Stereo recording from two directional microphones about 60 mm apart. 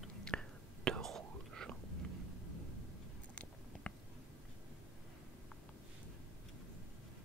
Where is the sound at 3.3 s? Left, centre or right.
Centre.